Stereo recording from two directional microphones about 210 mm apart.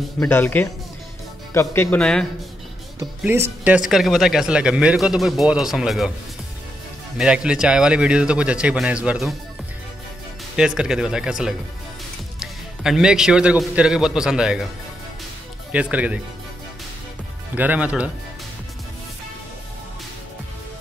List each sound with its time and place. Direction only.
0.2 s speech: 10° left (ahead or behind)
3.0 s speech: 10° right (ahead or behind)
7.2 s speech: 5° right (ahead or behind)
10.5 s a man's voice: 5° right (ahead or behind)
15.7 s speech: 5° right (ahead or behind)
17.6 s speech: 5° right (ahead or behind)